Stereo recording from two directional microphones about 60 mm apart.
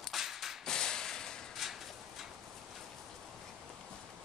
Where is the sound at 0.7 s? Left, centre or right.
Centre.